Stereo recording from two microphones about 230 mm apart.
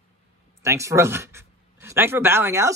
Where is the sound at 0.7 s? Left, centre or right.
Centre.